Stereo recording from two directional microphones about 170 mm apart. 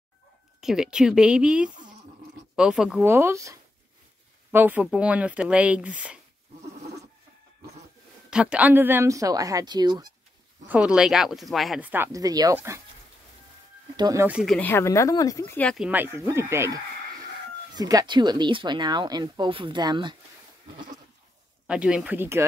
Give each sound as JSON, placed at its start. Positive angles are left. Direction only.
{"t": 0.6, "sound": "speech", "side_deg": -5}
{"t": 8.3, "sound": "speech", "side_deg": -5}
{"t": 10.7, "sound": "speech", "side_deg": -5}
{"t": 13.9, "sound": "speech", "side_deg": -25}
{"t": 14.2, "sound": "speech", "side_deg": -5}
{"t": 14.7, "sound": "speech", "side_deg": 15}
{"t": 15.8, "sound": "speech", "side_deg": -10}
{"t": 21.6, "sound": "speech", "side_deg": -5}